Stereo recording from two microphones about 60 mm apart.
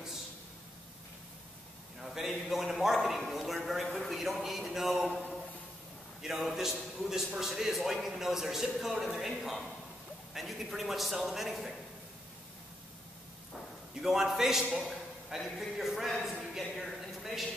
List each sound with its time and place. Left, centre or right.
2.0 s a man's voice: centre
6.2 s a man's voice: centre
14.0 s a man's voice: centre
16.5 s a sound: centre